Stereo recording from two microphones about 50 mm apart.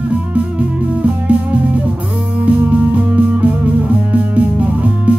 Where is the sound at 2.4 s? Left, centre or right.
Right.